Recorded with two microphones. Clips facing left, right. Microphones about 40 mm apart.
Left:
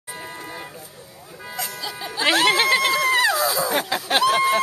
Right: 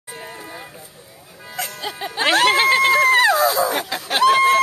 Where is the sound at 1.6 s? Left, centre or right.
Right.